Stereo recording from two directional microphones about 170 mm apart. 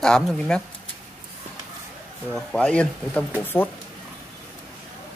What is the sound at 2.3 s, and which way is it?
Speech, 5° left (ahead or behind).